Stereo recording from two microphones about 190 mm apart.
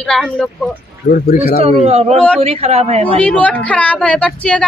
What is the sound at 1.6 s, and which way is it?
A woman's voice, 35° right (ahead or behind).